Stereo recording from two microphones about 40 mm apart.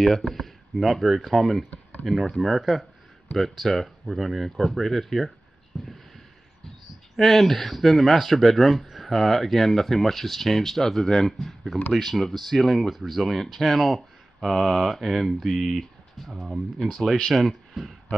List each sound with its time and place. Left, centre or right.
0.0 s speech: centre
1.7 s a sound: left
2.0 s speech: centre
7.2 s speech: centre